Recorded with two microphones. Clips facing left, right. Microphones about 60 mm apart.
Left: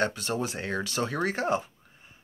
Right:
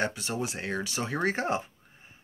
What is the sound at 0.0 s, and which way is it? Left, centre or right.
Speech, centre.